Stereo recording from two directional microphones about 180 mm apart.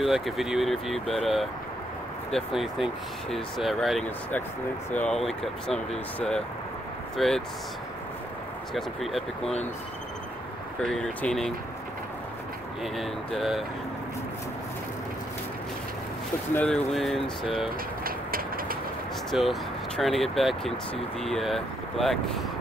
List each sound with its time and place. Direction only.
0.0 s speech: centre (ahead or behind)
8.7 s speech: centre (ahead or behind)
10.8 s speech: 5° left (ahead or behind)
12.8 s speech: centre (ahead or behind)
16.5 s speech: 5° left (ahead or behind)
18.0 s vehicle: 55° right (ahead or behind)
19.3 s speech: centre (ahead or behind)